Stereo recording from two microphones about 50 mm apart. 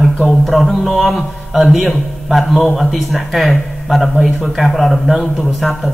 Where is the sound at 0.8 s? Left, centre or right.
Centre.